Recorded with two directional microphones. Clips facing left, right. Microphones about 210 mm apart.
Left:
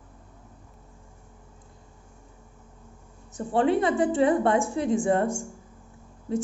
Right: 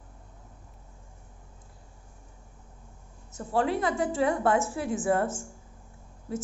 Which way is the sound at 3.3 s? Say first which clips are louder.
Left 5 dB; centre (ahead or behind).